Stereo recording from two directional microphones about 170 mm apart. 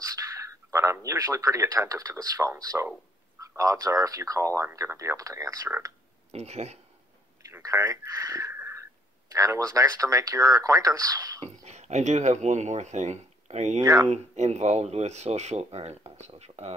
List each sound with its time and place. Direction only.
0.0 s a sound: 20° right (ahead or behind)
2.3 s speech: 20° right (ahead or behind)
6.3 s speech: 40° right (ahead or behind)
7.5 s speech: 15° right (ahead or behind)
11.4 s speech: 40° right (ahead or behind)